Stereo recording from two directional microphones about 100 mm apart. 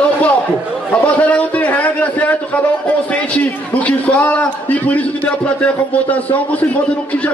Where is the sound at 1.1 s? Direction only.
15° left (ahead or behind).